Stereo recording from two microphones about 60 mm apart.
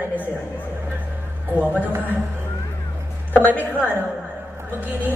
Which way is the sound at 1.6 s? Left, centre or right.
Right.